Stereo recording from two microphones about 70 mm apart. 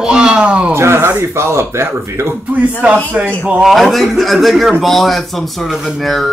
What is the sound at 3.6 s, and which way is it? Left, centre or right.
A man's voice, centre.